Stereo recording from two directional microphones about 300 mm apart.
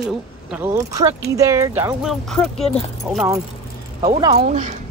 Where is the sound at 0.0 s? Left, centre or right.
Centre.